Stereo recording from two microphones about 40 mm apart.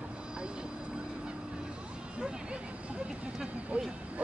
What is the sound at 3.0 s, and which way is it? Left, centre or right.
Vehicle, right.